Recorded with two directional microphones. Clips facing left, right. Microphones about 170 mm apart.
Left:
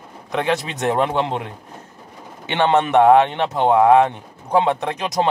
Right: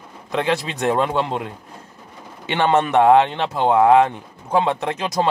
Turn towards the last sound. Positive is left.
turn(degrees=20)  # may be behind; listen again after turning